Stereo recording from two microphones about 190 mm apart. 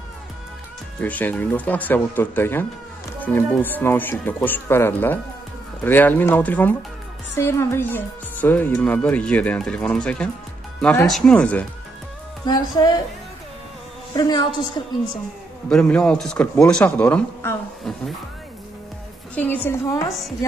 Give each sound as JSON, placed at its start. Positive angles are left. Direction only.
{"t": 0.9, "sound": "speech", "side_deg": 10}
{"t": 12.4, "sound": "a woman's voice", "side_deg": 20}
{"t": 14.1, "sound": "a woman's voice", "side_deg": 20}
{"t": 15.7, "sound": "speech", "side_deg": 5}
{"t": 19.3, "sound": "speech", "side_deg": 10}